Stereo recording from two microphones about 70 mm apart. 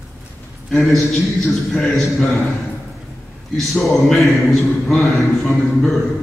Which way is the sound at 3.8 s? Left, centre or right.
Centre.